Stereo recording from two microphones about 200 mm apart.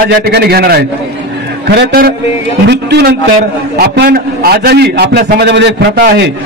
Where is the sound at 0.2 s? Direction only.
55° right (ahead or behind).